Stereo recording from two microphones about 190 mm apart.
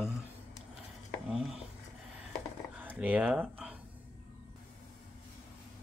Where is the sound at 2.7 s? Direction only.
10° right (ahead or behind).